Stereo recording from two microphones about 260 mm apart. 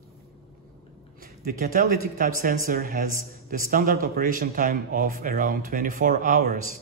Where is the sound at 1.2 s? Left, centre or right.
Right.